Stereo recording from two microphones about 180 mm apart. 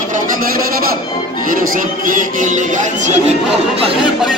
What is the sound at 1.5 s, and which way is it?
Music, 45° right (ahead or behind).